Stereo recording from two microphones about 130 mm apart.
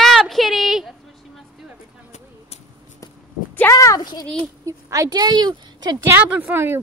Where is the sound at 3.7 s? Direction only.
25° left (ahead or behind).